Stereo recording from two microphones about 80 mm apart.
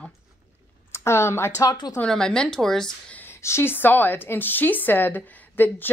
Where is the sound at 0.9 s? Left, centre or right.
Left.